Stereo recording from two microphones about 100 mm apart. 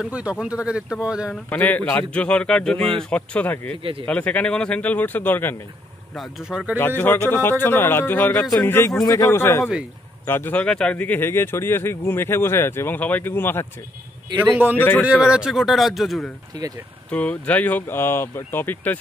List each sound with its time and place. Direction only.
0.1 s speech: 10° right (ahead or behind)
1.3 s speech: 15° left (ahead or behind)
6.1 s a man's voice: centre (ahead or behind)
7.0 s speech: 20° left (ahead or behind)
14.3 s a man's voice: 50° right (ahead or behind)
14.8 s speech: 20° left (ahead or behind)
15.0 s a man's voice: 10° right (ahead or behind)
17.1 s speech: 15° left (ahead or behind)